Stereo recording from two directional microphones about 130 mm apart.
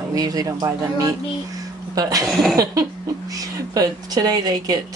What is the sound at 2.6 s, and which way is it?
Speech, 30° right (ahead or behind).